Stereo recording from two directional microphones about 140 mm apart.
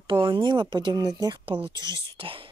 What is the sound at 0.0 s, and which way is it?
Speech, 35° right (ahead or behind).